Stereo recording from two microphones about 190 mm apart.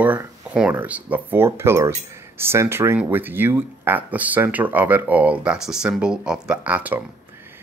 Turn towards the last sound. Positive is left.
turn(degrees=-10)  # may be behind; listen again after turning